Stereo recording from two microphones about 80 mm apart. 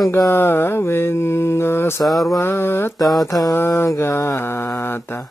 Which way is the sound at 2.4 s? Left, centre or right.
Left.